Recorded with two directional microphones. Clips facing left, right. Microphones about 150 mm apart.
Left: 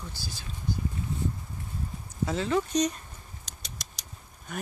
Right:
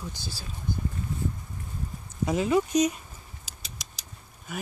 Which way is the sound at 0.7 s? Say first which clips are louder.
Even; 50° right (ahead or behind).